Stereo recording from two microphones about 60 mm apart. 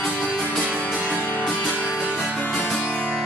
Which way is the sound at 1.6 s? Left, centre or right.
Centre.